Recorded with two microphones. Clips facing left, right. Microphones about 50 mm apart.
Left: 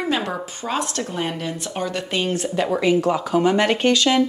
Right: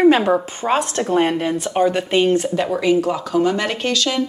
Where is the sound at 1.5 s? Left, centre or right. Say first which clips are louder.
Right 8 dB; right.